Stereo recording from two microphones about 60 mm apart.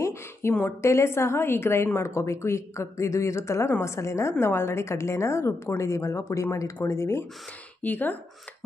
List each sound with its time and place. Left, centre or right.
0.0 s a sound: left
0.7 s a woman's voice: left
7.8 s speech: left